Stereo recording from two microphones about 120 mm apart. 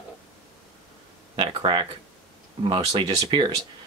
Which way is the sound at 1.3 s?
45° right (ahead or behind).